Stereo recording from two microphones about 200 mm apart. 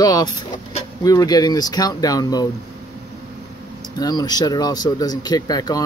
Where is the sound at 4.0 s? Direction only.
20° left (ahead or behind).